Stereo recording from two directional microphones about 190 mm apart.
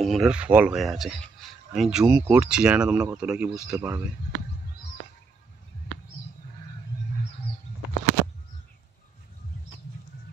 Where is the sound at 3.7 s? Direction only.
15° right (ahead or behind).